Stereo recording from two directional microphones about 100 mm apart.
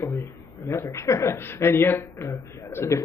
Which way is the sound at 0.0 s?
25° left (ahead or behind).